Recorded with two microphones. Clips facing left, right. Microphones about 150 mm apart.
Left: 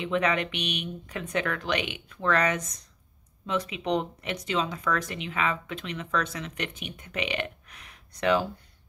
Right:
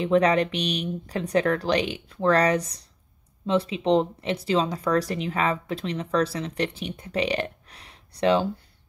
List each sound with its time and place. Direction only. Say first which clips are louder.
0.0 s speech: right 6 dB; 35° right (ahead or behind)